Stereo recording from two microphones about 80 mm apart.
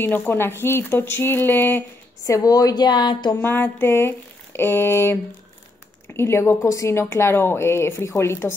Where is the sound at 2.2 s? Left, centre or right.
Left.